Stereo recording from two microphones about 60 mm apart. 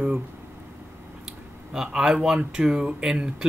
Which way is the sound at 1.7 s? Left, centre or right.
Centre.